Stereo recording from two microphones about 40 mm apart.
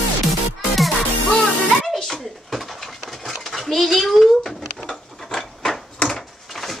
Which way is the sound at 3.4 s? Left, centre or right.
Centre.